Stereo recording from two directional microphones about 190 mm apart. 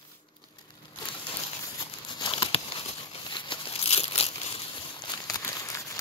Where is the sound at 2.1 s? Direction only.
25° left (ahead or behind).